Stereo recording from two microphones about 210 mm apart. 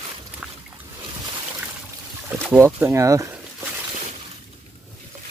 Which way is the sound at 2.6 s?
10° right (ahead or behind).